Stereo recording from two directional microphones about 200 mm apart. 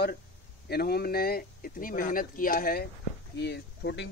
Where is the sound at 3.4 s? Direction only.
55° left (ahead or behind).